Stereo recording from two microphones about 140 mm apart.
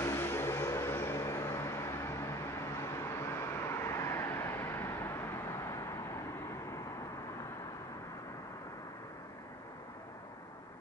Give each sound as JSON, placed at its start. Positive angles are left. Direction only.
{"t": 0.0, "sound": "vehicle", "side_deg": 20}